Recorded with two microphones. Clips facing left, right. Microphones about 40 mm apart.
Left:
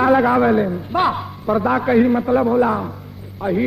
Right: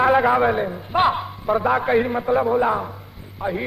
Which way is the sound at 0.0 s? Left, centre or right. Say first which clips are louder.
Left 2 dB; centre.